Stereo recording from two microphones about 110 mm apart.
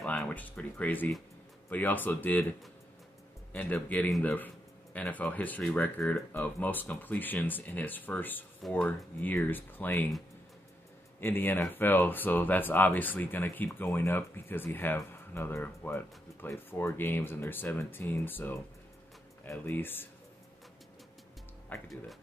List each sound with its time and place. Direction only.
0.2 s speech: 15° left (ahead or behind)
3.5 s speech: 15° left (ahead or behind)
11.1 s speech: 20° left (ahead or behind)